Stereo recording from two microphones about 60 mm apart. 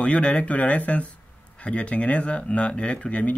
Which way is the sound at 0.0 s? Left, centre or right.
Centre.